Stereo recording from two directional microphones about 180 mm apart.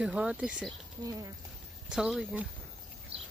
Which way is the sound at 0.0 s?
5° right (ahead or behind).